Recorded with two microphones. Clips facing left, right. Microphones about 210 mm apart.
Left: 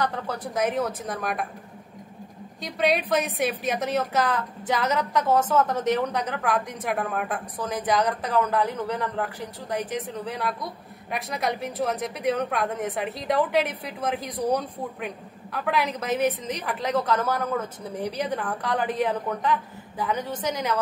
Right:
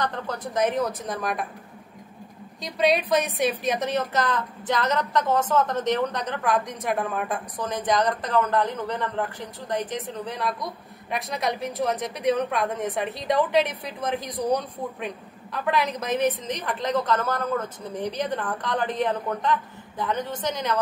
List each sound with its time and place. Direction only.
0.0 s a woman's voice: 5° left (ahead or behind)
2.6 s a woman's voice: 5° left (ahead or behind)